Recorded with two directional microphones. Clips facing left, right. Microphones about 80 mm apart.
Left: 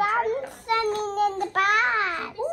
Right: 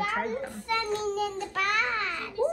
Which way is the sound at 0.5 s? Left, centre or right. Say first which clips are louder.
Left 5 dB; left.